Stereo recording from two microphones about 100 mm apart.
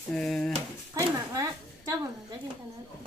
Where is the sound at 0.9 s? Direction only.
35° right (ahead or behind).